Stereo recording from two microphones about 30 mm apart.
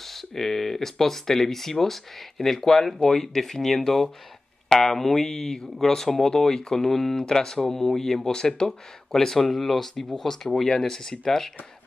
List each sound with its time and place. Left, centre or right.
0.0 s speech: centre